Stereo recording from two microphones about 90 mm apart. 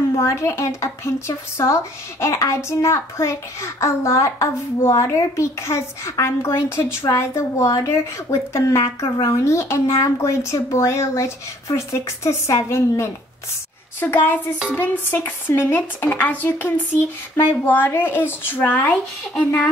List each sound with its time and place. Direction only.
0.2 s speech: 30° left (ahead or behind)
13.9 s speech: 20° left (ahead or behind)